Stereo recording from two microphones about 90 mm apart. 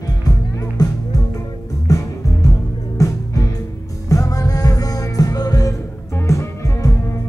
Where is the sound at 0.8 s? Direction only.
45° left (ahead or behind).